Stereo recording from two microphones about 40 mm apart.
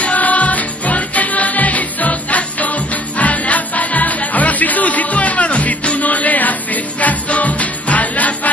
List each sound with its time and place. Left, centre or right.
0.0 s music: left